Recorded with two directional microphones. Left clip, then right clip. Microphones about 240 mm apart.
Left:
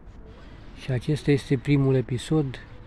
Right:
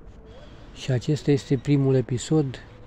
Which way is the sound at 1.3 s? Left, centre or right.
Centre.